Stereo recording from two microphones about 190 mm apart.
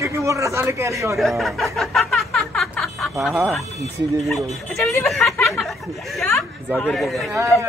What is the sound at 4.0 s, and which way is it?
A man's voice, centre (ahead or behind).